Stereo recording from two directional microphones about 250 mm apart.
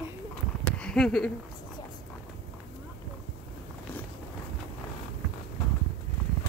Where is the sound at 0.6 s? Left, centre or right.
Centre.